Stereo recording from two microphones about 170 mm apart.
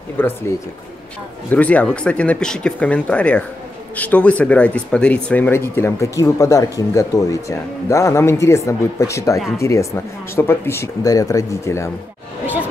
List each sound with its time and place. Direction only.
0.2 s speech: 10° left (ahead or behind)
1.5 s speech: 10° left (ahead or behind)